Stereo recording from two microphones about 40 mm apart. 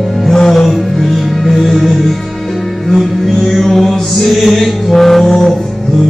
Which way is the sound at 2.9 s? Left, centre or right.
Centre.